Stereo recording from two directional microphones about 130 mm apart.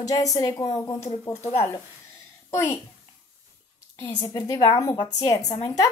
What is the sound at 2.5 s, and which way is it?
Speech, 25° left (ahead or behind).